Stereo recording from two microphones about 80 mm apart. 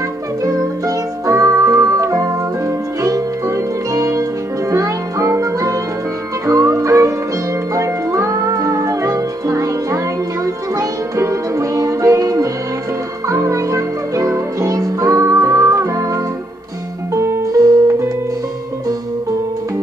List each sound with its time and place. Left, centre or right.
0.4 s music: right